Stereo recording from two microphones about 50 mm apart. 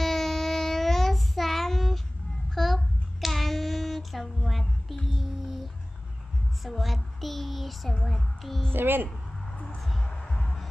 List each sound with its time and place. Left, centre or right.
0.0 s child singing: centre
6.6 s a sound: centre
8.7 s a woman's voice: right
10.0 s music: centre